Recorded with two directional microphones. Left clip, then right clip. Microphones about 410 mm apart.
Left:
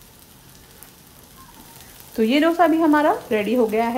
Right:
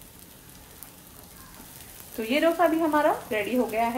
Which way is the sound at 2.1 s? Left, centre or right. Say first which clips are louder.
Left 6 dB; left.